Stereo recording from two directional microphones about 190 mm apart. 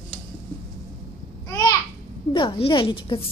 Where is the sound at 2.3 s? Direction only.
25° left (ahead or behind).